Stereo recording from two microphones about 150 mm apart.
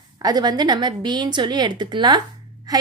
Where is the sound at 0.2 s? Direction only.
25° right (ahead or behind).